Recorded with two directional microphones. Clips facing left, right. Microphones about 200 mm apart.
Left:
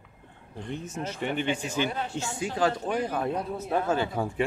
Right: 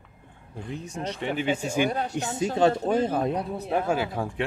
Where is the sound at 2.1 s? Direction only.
20° right (ahead or behind).